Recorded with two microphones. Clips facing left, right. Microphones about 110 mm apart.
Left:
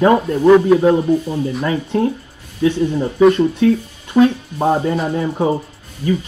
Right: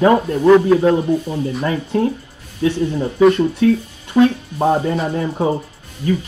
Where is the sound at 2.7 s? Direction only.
10° left (ahead or behind).